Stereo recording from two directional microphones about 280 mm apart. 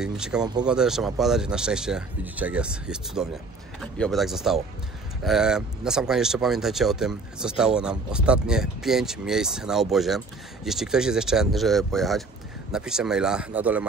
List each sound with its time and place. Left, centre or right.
0.0 s speech: centre